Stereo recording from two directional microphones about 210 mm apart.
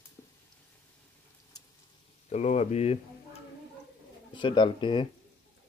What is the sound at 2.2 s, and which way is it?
Speech, 30° left (ahead or behind).